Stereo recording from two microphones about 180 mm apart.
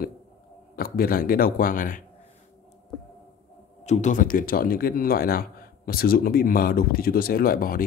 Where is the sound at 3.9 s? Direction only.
45° left (ahead or behind).